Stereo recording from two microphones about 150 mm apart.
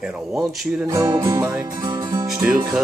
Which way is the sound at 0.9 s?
25° right (ahead or behind).